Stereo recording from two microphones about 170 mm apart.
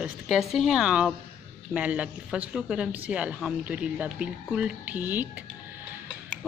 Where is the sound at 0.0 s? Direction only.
Centre (ahead or behind).